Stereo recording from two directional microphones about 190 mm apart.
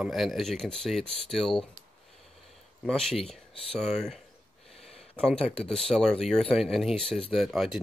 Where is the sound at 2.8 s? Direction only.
5° left (ahead or behind).